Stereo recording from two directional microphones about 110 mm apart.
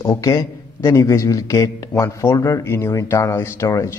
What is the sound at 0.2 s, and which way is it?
A man's voice, 30° left (ahead or behind).